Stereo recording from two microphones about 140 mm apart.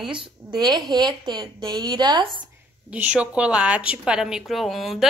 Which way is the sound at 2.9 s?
10° right (ahead or behind).